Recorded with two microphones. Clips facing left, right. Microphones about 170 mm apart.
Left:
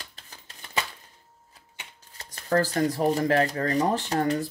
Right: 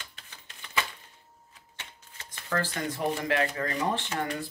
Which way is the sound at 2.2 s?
40° left (ahead or behind).